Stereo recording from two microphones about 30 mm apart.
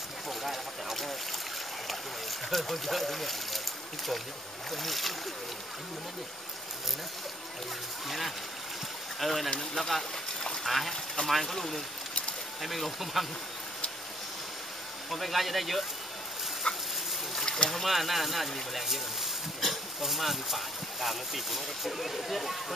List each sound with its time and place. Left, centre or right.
0.3 s boat: centre
2.5 s speech: centre
4.6 s speech: centre
9.2 s speech: centre
9.6 s speech: centre
10.6 s speech: centre
15.0 s speech: centre
16.6 s a sound: left
17.5 s boat: left
17.8 s speech: centre
20.0 s speech: centre